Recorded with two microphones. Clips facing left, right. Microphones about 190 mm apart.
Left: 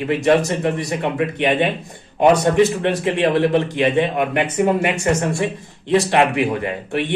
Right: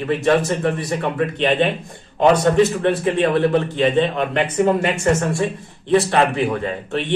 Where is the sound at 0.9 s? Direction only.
15° left (ahead or behind).